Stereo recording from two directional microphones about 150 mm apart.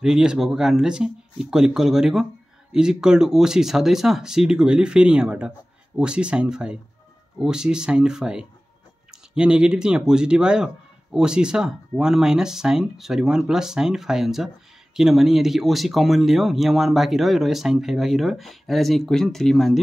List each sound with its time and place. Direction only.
0.0 s speech: 5° right (ahead or behind)